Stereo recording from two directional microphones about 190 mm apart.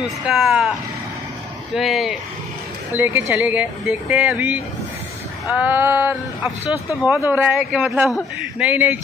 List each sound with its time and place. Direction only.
0.3 s speech: centre (ahead or behind)
1.8 s speech: centre (ahead or behind)
3.0 s a man's voice: 10° right (ahead or behind)
6.9 s speech: 15° left (ahead or behind)
7.2 s a man's voice: 10° right (ahead or behind)